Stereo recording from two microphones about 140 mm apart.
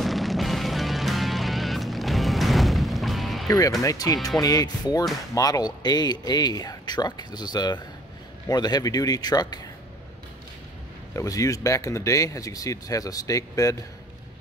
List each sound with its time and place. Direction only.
0.0 s music: centre (ahead or behind)
3.4 s speech: 25° left (ahead or behind)
11.1 s speech: 25° left (ahead or behind)